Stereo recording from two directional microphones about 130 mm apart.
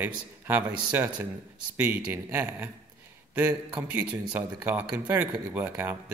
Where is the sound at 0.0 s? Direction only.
15° right (ahead or behind).